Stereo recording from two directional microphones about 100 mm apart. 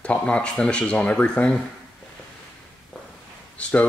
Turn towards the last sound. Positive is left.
turn(degrees=10)  # may be behind; listen again after turning